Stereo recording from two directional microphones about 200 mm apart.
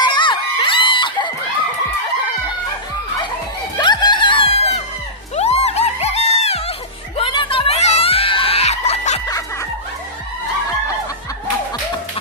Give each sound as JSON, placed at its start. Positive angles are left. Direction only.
{"t": 0.0, "sound": "crowd", "side_deg": 25}
{"t": 3.7, "sound": "music", "side_deg": 20}